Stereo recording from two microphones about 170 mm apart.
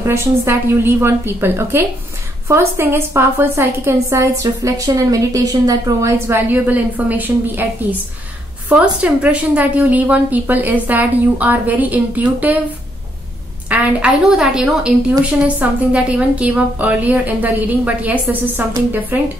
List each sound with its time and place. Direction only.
0.0 s a woman's voice: 15° right (ahead or behind)
8.6 s a woman's voice: 10° right (ahead or behind)
13.7 s a woman's voice: 10° right (ahead or behind)